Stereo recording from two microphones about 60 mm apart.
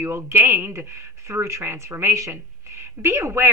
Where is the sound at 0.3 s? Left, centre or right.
Right.